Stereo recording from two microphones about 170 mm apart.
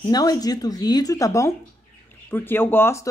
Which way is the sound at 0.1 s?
20° left (ahead or behind).